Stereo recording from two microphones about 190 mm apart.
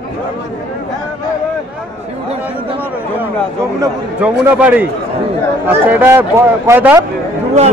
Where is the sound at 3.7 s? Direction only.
15° right (ahead or behind).